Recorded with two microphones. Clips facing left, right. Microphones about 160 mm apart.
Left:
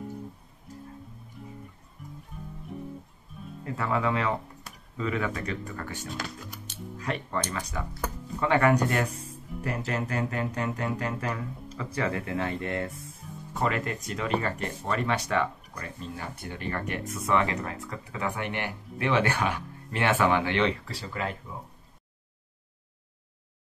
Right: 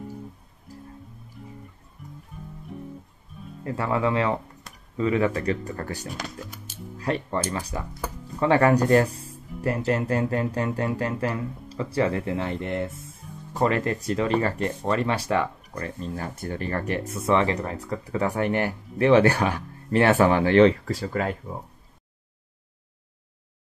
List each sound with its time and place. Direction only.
2.0 s music: centre (ahead or behind)
3.6 s speech: 30° right (ahead or behind)
6.1 s speech: centre (ahead or behind)
7.0 s speech: 35° right (ahead or behind)
9.5 s music: centre (ahead or behind)
9.8 s speech: 35° right (ahead or behind)
15.7 s speech: 40° right (ahead or behind)